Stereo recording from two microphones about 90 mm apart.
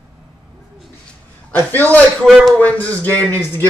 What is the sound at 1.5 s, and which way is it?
Speech, 20° left (ahead or behind).